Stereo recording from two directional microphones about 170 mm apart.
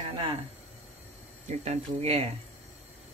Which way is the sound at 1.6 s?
35° right (ahead or behind).